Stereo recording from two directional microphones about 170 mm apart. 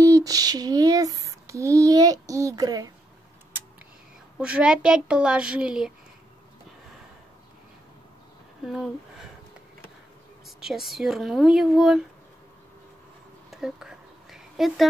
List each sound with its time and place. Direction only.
0.0 s female singing: 20° right (ahead or behind)
4.4 s a woman's voice: 5° right (ahead or behind)
8.6 s a woman's voice: centre (ahead or behind)
10.6 s a woman's voice: centre (ahead or behind)
13.5 s a sound: 5° right (ahead or behind)